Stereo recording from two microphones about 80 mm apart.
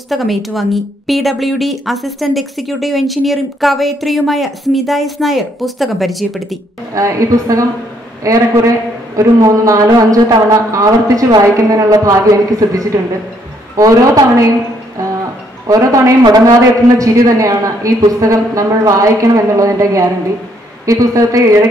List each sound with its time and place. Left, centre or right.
0.1 s a woman's voice: centre
6.9 s a man's voice: right
15.6 s a man's voice: right